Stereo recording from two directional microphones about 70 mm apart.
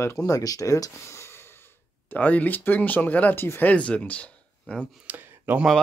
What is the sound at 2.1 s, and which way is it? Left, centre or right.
Speech, left.